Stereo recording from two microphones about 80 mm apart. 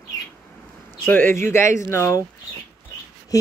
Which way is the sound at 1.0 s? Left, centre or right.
Left.